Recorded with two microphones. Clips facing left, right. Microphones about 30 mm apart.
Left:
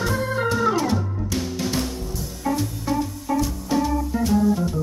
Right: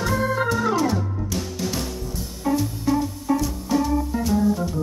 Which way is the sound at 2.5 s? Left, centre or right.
Centre.